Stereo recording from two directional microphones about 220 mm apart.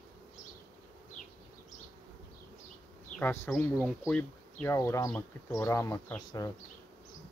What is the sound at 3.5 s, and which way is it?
Speech, centre (ahead or behind).